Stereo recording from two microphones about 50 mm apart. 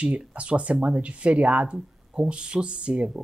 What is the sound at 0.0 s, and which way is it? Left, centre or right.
Speech, right.